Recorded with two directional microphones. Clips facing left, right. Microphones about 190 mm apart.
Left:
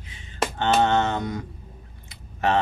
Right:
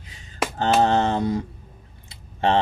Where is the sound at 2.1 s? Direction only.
30° right (ahead or behind).